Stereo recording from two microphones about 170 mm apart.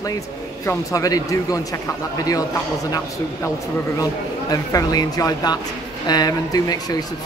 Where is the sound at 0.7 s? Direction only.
20° left (ahead or behind).